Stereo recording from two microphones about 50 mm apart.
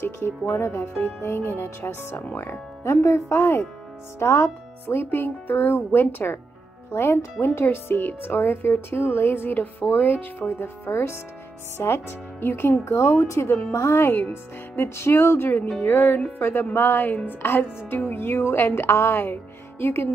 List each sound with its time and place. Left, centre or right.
0.0 s speech: left
2.8 s speech: left
12.8 s speech: left
14.3 s speech: left